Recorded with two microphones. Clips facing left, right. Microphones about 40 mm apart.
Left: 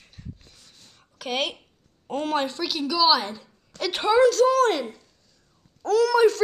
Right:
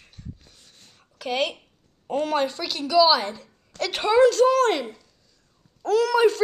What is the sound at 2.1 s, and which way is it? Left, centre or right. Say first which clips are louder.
A woman's voice: right 2 dB; centre.